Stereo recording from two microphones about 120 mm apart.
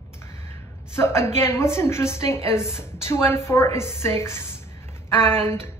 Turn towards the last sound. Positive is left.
turn(degrees=20)  # may be behind; listen again after turning